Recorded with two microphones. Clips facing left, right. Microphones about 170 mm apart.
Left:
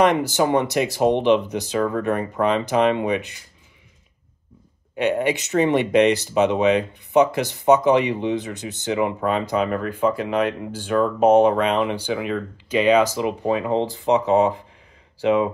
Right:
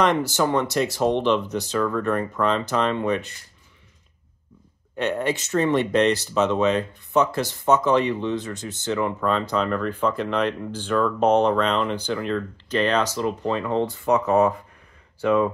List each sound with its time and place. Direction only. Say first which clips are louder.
0.0 s speech: left 3 dB; 15° left (ahead or behind)
4.9 s speech: left 3 dB; 10° left (ahead or behind)
15.2 s speech: left 1 dB; 20° left (ahead or behind)